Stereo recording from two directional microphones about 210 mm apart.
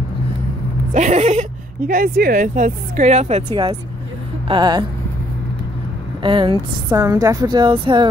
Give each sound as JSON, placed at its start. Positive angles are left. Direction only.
{"t": 0.9, "sound": "a woman's voice", "side_deg": -35}
{"t": 6.2, "sound": "a woman's voice", "side_deg": -20}